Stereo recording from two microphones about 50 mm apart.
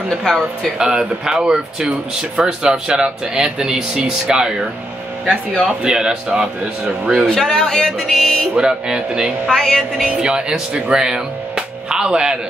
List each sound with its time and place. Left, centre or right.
0.7 s speech: centre
7.2 s speech: centre
8.1 s music: centre
8.5 s speech: centre
9.5 s speech: centre
9.9 s speech: centre